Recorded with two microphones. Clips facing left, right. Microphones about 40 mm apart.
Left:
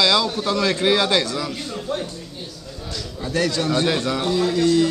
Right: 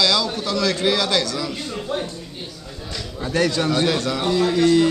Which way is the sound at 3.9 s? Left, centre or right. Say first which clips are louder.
Even; centre.